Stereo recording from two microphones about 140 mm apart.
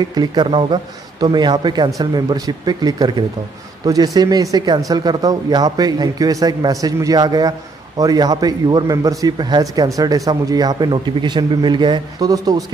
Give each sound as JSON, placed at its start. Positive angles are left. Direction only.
{"t": 0.1, "sound": "a man's voice", "side_deg": -30}